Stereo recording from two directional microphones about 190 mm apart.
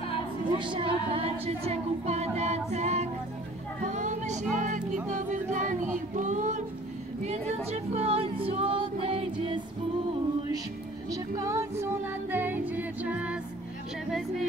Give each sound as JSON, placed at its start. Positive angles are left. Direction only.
{"t": 0.6, "sound": "music", "side_deg": -25}
{"t": 3.8, "sound": "a sound", "side_deg": -40}
{"t": 4.6, "sound": "music", "side_deg": -40}
{"t": 7.2, "sound": "female singing", "side_deg": -35}
{"t": 11.1, "sound": "music", "side_deg": -15}